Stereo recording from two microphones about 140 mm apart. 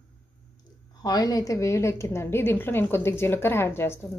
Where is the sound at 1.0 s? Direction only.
30° left (ahead or behind).